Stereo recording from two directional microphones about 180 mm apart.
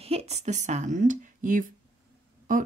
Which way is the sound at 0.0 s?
35° right (ahead or behind).